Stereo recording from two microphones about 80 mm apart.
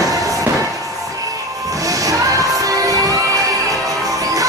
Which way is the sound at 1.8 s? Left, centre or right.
Right.